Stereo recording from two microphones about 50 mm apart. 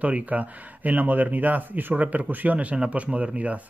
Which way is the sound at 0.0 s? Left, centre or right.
Right.